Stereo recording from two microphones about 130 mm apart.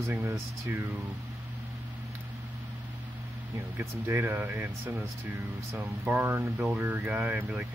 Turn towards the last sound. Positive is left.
turn(degrees=-15)  # may be behind; listen again after turning